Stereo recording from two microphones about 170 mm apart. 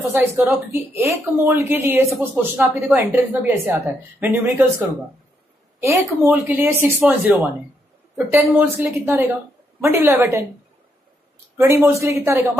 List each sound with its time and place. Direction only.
0.1 s a woman's voice: 15° right (ahead or behind)
11.5 s a woman's voice: 15° right (ahead or behind)